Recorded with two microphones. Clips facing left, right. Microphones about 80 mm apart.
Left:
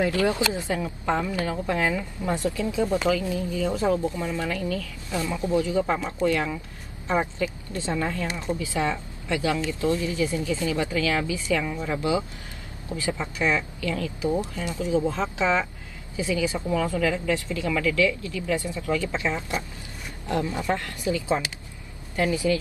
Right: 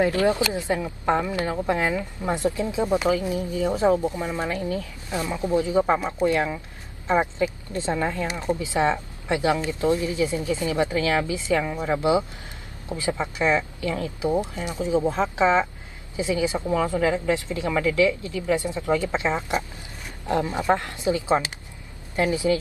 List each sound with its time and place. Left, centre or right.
0.0 s a woman's voice: right
12.0 s a woman's voice: right